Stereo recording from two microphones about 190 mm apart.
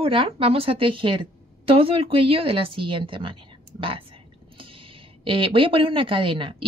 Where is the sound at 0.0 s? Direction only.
30° right (ahead or behind).